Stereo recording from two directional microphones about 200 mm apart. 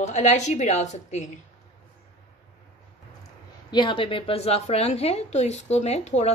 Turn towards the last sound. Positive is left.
turn(degrees=35)  # may be behind; listen again after turning